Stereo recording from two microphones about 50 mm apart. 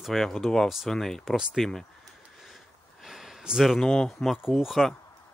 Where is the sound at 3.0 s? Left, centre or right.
Centre.